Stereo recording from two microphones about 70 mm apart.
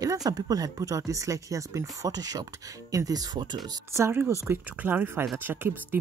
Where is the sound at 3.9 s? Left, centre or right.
Right.